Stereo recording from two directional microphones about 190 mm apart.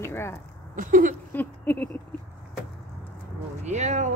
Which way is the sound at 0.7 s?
45° right (ahead or behind).